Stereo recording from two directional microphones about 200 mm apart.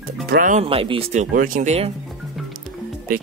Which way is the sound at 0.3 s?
40° right (ahead or behind).